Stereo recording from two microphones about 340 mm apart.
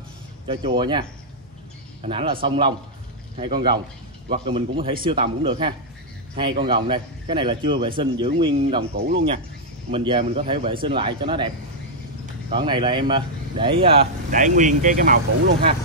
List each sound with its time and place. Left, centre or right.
0.5 s a man's voice: centre
2.0 s a man's voice: centre
9.8 s a man's voice: centre